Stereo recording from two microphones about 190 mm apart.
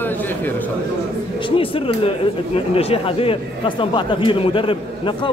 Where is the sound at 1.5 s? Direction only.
30° left (ahead or behind).